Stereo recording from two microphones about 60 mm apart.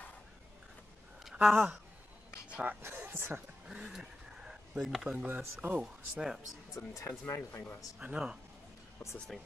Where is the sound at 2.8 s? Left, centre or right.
Right.